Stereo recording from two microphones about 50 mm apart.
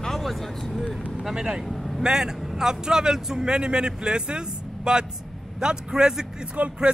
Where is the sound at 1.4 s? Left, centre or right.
Centre.